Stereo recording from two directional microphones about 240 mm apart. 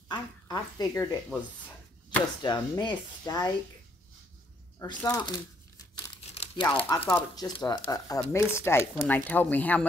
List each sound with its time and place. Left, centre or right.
0.1 s a woman's voice: centre
4.7 s speech: centre
6.3 s speech: left; by 9.8 s centre